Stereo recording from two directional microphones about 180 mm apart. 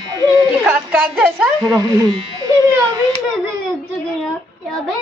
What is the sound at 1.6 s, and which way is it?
Speech, 20° right (ahead or behind).